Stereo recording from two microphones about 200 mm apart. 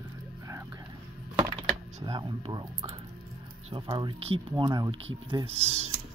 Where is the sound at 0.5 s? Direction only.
15° right (ahead or behind).